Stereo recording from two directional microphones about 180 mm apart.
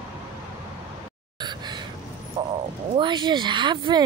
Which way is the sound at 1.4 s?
25° right (ahead or behind).